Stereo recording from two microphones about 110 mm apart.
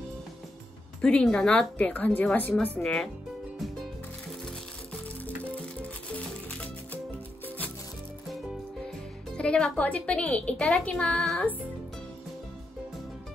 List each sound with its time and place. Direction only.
1.0 s a woman's voice: 10° left (ahead or behind)
5.2 s music: 15° left (ahead or behind)
9.4 s a woman's voice: 10° left (ahead or behind)